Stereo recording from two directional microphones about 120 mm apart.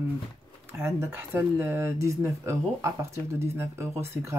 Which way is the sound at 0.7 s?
20° right (ahead or behind).